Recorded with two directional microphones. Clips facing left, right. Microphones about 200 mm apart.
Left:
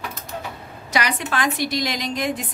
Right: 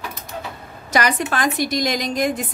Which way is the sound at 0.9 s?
45° right (ahead or behind).